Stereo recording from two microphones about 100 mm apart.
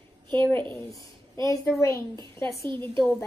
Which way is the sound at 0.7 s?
30° left (ahead or behind).